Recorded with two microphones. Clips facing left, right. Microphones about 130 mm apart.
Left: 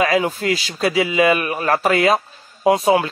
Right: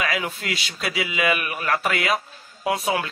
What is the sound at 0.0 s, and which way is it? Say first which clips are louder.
A man's voice: left 9 dB; 30° left (ahead or behind).